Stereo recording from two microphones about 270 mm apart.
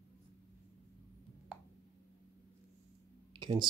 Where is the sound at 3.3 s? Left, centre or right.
Centre.